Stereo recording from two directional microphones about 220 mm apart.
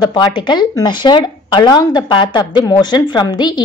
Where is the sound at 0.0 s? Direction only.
20° left (ahead or behind).